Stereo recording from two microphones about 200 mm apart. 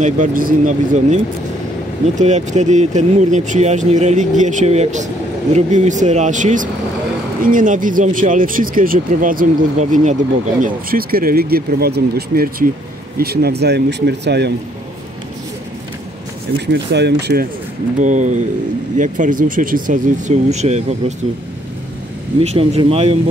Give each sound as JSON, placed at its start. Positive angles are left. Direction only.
{"t": 0.0, "sound": "speech", "side_deg": -40}
{"t": 16.5, "sound": "speech", "side_deg": -60}
{"t": 18.0, "sound": "speech", "side_deg": -40}
{"t": 22.4, "sound": "speech", "side_deg": -30}